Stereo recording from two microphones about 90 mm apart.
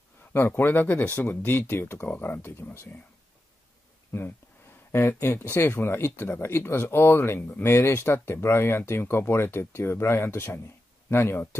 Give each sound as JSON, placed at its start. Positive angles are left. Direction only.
{"t": 0.2, "sound": "speech", "side_deg": 25}
{"t": 4.9, "sound": "speech", "side_deg": 25}